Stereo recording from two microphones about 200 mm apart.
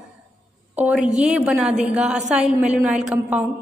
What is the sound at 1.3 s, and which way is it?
A woman's voice, 5° right (ahead or behind).